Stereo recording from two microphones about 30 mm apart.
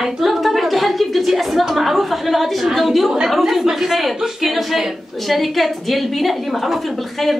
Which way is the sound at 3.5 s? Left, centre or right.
Centre.